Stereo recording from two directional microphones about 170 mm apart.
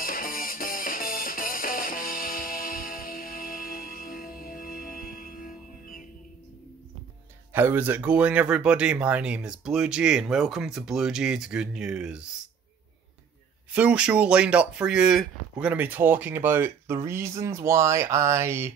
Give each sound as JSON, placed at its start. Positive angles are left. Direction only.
{"t": 0.0, "sound": "music", "side_deg": 55}
{"t": 7.5, "sound": "speech", "side_deg": -10}
{"t": 13.7, "sound": "speech", "side_deg": -10}